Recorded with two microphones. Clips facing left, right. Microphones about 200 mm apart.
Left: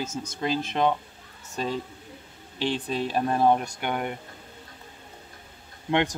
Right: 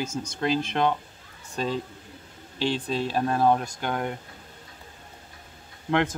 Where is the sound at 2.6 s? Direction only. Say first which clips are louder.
Right 1 dB; 15° left (ahead or behind).